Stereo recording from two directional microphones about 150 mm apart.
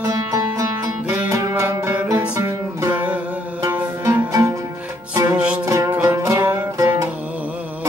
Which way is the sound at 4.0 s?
25° right (ahead or behind).